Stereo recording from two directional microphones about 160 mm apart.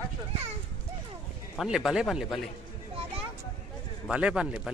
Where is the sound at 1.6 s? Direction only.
Centre (ahead or behind).